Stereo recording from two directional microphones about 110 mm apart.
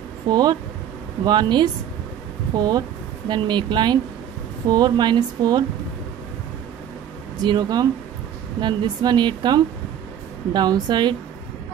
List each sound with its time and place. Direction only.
0.3 s speech: 40° right (ahead or behind)
7.4 s speech: 40° right (ahead or behind)